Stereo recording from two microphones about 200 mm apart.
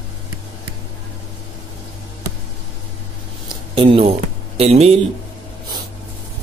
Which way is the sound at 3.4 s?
25° right (ahead or behind).